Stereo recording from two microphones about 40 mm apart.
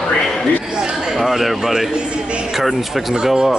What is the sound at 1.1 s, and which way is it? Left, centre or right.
Speech, centre.